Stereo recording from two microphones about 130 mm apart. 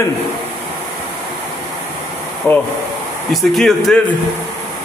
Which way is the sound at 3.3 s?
Centre (ahead or behind).